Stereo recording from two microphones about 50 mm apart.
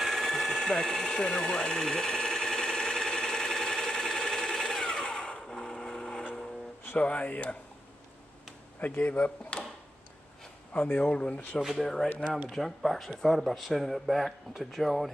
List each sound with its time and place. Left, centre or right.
0.0 s a sound: centre
7.0 s speech: left
8.8 s speech: left
9.5 s a sound: left
10.7 s speech: left
11.8 s speech: centre